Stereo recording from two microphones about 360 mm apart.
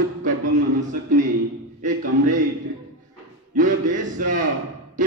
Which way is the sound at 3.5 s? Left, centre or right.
Right.